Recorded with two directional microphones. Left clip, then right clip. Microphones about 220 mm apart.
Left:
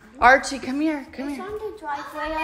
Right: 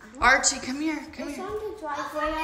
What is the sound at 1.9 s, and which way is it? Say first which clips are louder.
Speech: even; centre (ahead or behind).